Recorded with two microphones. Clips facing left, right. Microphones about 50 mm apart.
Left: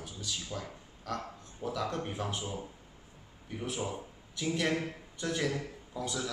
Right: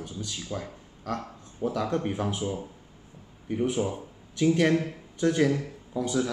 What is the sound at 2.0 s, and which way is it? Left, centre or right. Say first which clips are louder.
Speech: right 7 dB; centre.